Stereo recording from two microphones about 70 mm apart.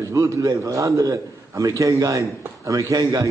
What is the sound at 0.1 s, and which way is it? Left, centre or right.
A man's voice, right.